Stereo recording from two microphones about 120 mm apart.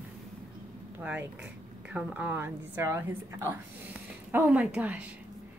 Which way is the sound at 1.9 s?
10° right (ahead or behind).